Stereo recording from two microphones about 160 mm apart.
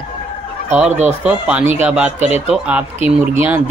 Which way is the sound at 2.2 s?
45° right (ahead or behind).